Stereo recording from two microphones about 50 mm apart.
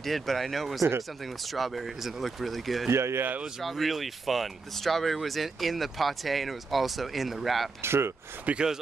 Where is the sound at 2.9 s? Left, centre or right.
Right.